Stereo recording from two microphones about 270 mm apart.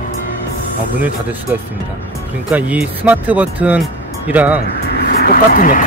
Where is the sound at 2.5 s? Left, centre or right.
Centre.